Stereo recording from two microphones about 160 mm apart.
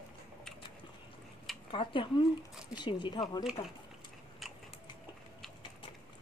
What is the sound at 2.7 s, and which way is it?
Speech, 30° left (ahead or behind).